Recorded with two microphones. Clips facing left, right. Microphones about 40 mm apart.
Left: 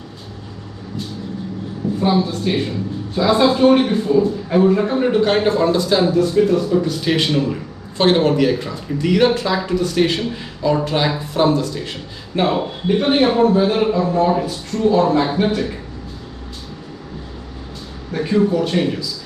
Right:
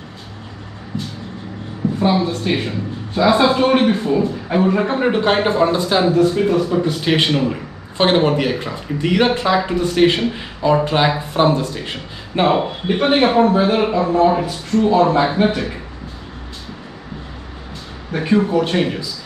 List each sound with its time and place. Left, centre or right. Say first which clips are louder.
2.0 s speech: even; right
18.1 s speech: right 1 dB; right